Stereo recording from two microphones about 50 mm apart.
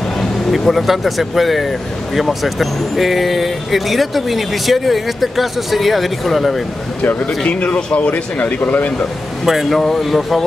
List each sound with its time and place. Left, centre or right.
0.5 s speech: centre
7.0 s speech: left
9.5 s speech: centre
9.8 s speech: centre